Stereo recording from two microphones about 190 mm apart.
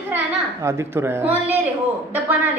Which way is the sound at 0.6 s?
15° right (ahead or behind).